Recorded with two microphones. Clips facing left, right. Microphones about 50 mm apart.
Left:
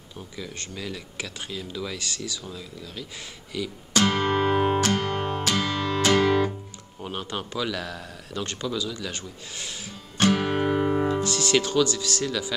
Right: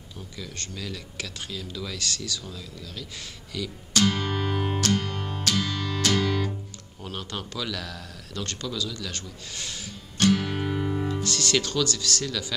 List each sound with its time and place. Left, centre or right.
0.4 s speech: centre
4.0 s music: left
7.0 s a man's voice: centre
11.1 s speech: centre